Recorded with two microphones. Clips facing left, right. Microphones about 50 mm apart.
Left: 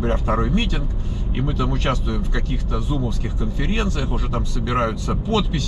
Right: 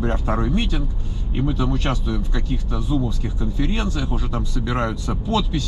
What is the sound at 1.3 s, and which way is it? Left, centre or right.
Speech, centre.